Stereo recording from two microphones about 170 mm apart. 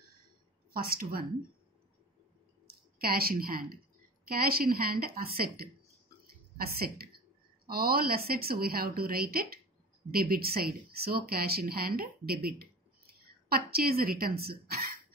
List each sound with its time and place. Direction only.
0.7 s a woman's voice: 60° right (ahead or behind)
2.6 s a woman's voice: 60° right (ahead or behind)
6.2 s a sound: 60° right (ahead or behind)
7.6 s a woman's voice: 60° right (ahead or behind)